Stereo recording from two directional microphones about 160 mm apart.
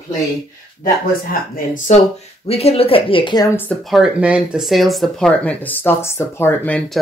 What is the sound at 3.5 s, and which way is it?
Speech, 10° left (ahead or behind).